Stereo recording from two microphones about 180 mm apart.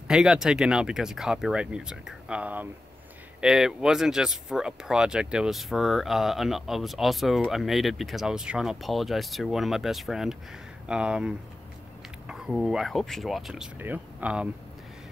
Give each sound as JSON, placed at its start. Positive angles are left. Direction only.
{"t": 0.1, "sound": "speech", "side_deg": -5}